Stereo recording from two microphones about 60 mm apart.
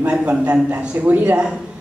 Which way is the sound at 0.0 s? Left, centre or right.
Centre.